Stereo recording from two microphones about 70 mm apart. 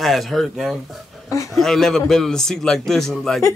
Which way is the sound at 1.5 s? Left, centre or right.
Centre.